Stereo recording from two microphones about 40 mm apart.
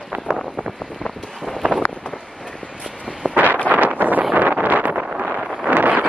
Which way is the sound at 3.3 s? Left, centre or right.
Right.